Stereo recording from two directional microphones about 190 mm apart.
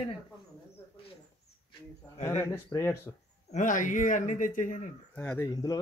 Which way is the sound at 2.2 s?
10° left (ahead or behind).